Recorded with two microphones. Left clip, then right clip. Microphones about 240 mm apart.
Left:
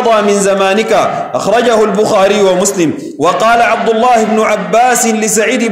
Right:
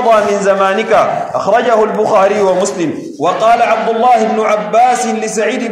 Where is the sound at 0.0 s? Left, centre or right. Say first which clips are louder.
Left 1 dB; left.